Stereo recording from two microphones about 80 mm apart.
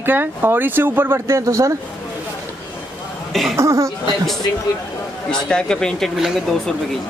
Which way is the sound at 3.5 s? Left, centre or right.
Right.